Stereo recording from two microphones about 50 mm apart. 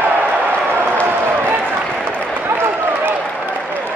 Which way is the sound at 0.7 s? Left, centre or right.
Right.